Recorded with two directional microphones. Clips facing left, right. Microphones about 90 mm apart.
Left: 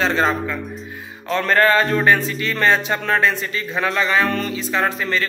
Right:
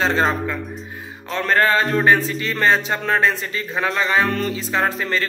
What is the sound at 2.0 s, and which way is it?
A man's voice, 25° right (ahead or behind).